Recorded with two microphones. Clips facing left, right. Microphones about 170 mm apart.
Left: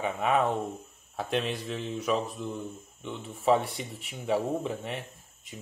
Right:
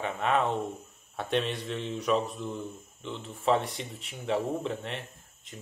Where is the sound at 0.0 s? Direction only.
5° left (ahead or behind).